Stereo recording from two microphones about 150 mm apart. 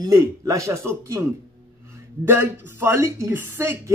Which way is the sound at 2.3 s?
15° right (ahead or behind).